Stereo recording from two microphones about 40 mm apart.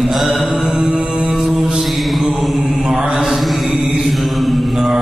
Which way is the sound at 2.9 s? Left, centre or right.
Right.